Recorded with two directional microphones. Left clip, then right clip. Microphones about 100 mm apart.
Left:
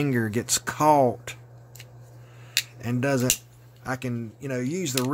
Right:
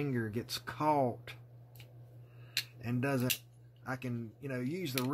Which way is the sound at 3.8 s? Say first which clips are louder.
Left 10 dB; 25° left (ahead or behind).